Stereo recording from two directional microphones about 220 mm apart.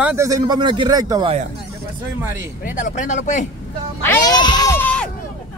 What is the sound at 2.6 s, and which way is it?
Speech, 35° left (ahead or behind).